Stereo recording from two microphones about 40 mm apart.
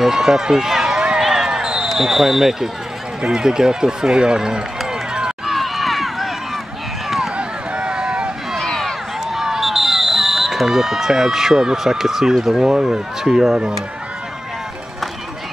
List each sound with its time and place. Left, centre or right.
0.0 s run: centre
1.2 s basketball bounce: centre
1.9 s speech: centre
5.5 s run: centre
7.3 s run: right
8.6 s a sound: centre
9.3 s a sound: centre
12.4 s speech: centre